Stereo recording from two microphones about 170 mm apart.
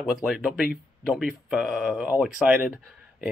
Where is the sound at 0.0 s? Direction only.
Centre (ahead or behind).